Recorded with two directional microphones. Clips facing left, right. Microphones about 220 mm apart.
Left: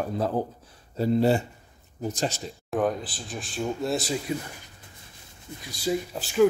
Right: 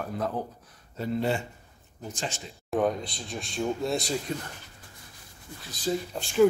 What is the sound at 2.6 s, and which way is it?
A man's voice, centre (ahead or behind).